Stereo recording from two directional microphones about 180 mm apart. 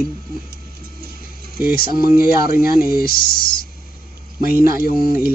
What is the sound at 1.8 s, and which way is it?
Speech, 55° left (ahead or behind).